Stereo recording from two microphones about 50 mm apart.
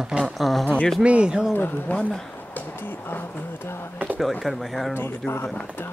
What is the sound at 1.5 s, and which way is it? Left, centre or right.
Speech, left.